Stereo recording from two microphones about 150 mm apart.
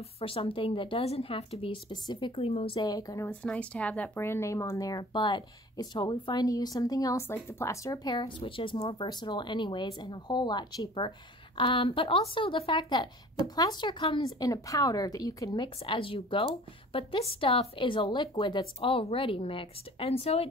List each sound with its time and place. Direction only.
0.2 s a woman's voice: 35° left (ahead or behind)
3.3 s a woman's voice: 10° left (ahead or behind); by 20.4 s 40° left (ahead or behind)